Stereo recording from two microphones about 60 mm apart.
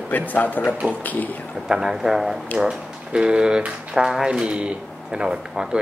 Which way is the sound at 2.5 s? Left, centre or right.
Centre.